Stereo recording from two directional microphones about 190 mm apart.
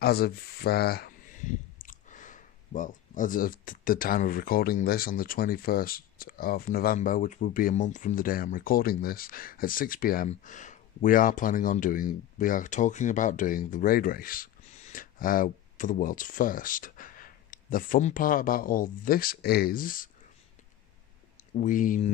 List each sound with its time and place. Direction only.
0.0 s speech: 55° left (ahead or behind)
1.8 s speech: 45° left (ahead or behind)
21.5 s speech: 45° left (ahead or behind)